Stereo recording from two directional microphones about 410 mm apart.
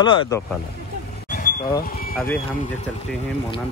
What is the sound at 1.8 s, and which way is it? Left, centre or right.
Speech, left.